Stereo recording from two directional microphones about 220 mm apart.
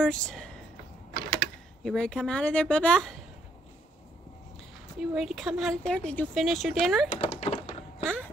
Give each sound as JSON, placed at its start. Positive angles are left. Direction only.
{"t": 0.0, "sound": "speech", "side_deg": 5}
{"t": 1.1, "sound": "typing", "side_deg": -40}
{"t": 1.9, "sound": "speech", "side_deg": 5}
{"t": 4.9, "sound": "speech", "side_deg": 0}
{"t": 7.3, "sound": "typing", "side_deg": 30}
{"t": 8.0, "sound": "walk", "side_deg": 5}